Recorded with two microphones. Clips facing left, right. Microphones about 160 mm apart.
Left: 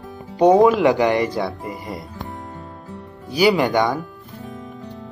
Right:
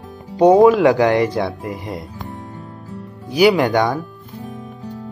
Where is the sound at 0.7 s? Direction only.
20° left (ahead or behind).